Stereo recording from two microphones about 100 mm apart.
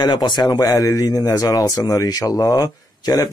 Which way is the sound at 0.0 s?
45° left (ahead or behind).